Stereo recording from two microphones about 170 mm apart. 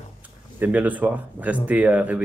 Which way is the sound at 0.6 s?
10° right (ahead or behind).